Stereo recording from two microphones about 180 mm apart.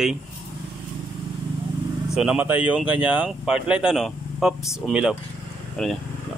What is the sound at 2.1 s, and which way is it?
Speech, 5° right (ahead or behind).